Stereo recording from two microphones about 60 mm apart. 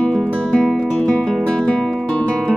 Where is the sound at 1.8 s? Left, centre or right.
Centre.